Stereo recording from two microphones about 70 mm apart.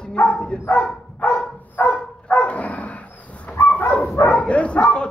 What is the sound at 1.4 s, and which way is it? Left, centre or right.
Dog, left.